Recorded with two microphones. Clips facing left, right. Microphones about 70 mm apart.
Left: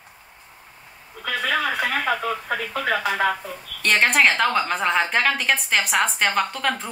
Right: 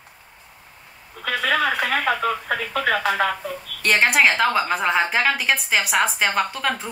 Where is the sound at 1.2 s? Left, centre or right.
Right.